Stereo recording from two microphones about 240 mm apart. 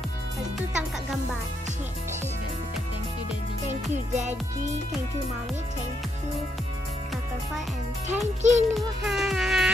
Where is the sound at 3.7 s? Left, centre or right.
Right.